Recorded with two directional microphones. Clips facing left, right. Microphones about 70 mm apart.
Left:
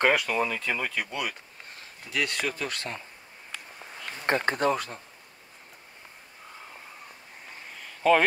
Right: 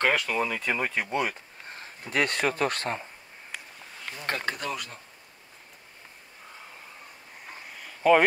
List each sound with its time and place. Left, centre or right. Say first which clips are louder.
0.0 s speech: left 1 dB; centre
0.6 s speech: right 2 dB; centre
1.8 s speech: right 3 dB; right
4.3 s speech: left 7 dB; left
7.7 s a sound: right 1 dB; centre